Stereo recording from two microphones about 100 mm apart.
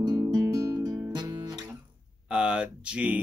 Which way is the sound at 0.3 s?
35° right (ahead or behind).